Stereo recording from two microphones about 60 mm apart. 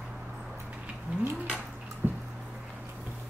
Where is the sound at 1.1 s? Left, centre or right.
Right.